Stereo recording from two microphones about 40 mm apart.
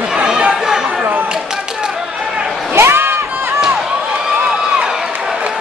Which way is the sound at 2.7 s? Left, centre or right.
Right.